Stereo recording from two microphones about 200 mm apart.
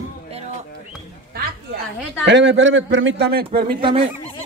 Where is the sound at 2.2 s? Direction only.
65° right (ahead or behind).